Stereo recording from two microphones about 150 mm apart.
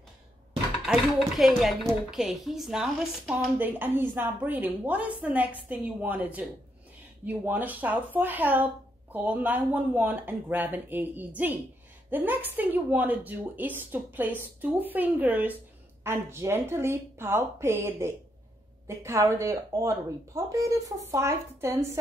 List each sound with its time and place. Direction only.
0.8 s a woman's voice: centre (ahead or behind); by 21.8 s 15° right (ahead or behind)